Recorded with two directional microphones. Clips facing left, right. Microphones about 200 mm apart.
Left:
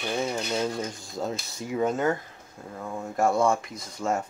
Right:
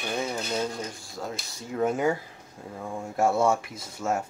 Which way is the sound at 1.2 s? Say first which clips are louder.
Left 5 dB; 20° left (ahead or behind).